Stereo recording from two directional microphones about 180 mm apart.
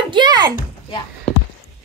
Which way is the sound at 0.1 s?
25° right (ahead or behind).